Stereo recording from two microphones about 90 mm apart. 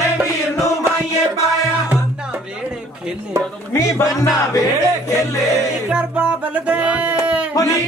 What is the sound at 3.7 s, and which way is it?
Speech, 30° left (ahead or behind).